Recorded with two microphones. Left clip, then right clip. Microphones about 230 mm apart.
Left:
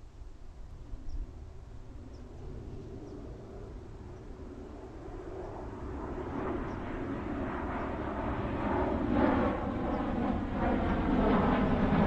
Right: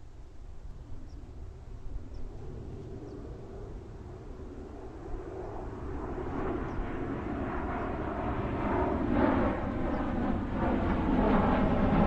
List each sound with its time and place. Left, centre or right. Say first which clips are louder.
4.7 s vehicle: right 3 dB; left